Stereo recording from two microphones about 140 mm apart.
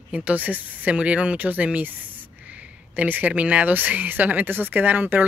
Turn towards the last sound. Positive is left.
turn(degrees=-15)  # may be behind; listen again after turning